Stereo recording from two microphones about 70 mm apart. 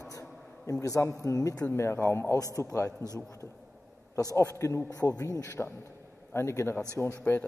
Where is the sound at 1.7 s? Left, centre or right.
Left.